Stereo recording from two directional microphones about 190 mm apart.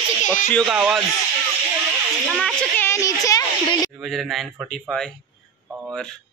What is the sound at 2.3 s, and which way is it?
Speech, 5° left (ahead or behind).